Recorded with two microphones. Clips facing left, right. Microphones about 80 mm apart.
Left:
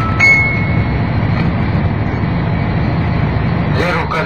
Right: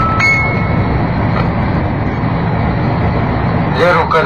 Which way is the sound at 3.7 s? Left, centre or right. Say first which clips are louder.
Right 8 dB; right.